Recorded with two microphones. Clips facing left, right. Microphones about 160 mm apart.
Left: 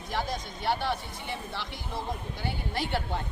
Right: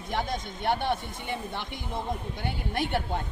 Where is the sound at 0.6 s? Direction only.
55° right (ahead or behind).